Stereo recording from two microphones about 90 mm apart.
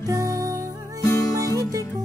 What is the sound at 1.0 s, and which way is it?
Music, 35° left (ahead or behind).